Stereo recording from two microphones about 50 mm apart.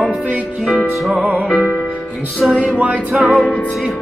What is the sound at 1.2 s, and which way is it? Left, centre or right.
Music, right.